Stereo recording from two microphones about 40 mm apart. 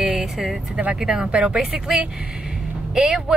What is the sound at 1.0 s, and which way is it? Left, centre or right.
A woman's voice, centre.